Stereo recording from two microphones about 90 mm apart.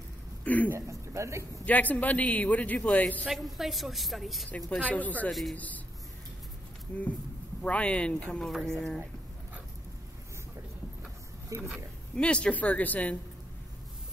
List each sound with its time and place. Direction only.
0.4 s throat clearing: 15° left (ahead or behind)
0.7 s speech: 30° right (ahead or behind)
1.7 s a man's voice: 20° left (ahead or behind)
3.3 s a woman's voice: centre (ahead or behind)
4.6 s a man's voice: 15° left (ahead or behind)
5.3 s a woman's voice: centre (ahead or behind)
7.6 s a man's voice: 10° left (ahead or behind)
11.4 s speech: 30° right (ahead or behind)
12.2 s a man's voice: 10° left (ahead or behind)